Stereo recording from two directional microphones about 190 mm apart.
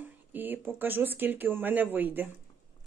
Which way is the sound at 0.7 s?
10° right (ahead or behind).